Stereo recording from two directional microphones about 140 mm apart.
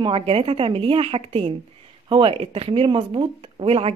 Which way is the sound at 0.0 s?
45° right (ahead or behind).